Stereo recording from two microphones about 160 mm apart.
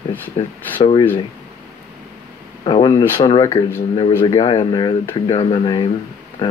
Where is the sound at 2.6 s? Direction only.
30° left (ahead or behind).